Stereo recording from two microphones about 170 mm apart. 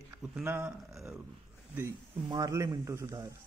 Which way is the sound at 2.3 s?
20° right (ahead or behind).